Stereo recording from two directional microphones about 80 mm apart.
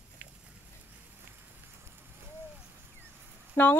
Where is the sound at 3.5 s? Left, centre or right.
Left.